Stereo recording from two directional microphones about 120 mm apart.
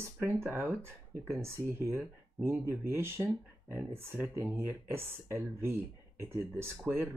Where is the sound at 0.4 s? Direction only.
15° right (ahead or behind).